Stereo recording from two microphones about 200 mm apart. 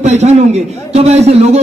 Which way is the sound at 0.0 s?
35° right (ahead or behind).